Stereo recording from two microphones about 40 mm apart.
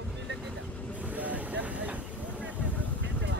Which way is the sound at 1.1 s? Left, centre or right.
Right.